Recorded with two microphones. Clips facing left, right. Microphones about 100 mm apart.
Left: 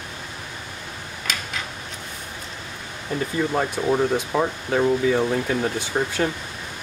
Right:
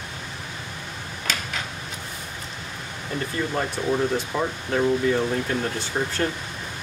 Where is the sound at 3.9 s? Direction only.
20° left (ahead or behind).